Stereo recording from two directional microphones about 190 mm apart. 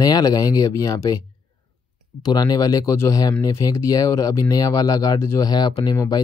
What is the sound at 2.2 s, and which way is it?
Speech, 20° left (ahead or behind).